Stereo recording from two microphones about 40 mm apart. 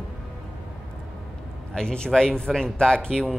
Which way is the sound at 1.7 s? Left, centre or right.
Left.